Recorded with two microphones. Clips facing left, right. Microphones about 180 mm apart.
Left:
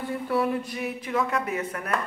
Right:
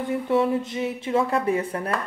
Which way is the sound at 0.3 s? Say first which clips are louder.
Right 4 dB; 20° right (ahead or behind).